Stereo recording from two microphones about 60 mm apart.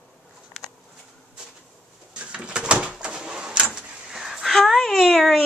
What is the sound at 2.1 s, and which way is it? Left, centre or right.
Bird, centre.